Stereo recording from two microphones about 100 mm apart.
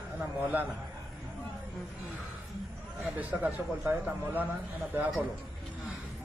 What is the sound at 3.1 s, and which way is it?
A man's voice, 15° right (ahead or behind).